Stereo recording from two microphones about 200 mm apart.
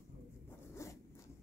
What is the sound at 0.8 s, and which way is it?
Zipper, 15° left (ahead or behind).